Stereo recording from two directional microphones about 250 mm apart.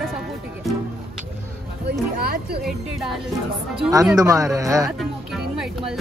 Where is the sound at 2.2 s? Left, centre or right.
Right.